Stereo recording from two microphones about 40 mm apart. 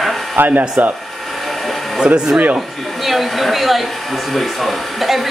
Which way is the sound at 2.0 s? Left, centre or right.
Centre.